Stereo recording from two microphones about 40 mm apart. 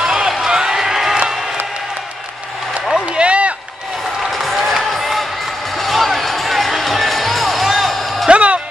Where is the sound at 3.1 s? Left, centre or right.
Right.